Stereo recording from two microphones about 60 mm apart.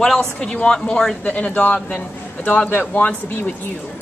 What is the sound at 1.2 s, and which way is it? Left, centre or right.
A woman's voice, left.